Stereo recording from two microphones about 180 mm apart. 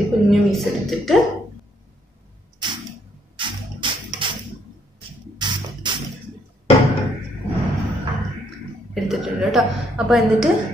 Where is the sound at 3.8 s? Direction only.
25° right (ahead or behind).